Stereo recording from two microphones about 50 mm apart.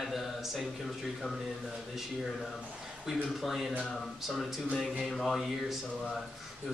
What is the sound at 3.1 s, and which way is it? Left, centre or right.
Speech, centre.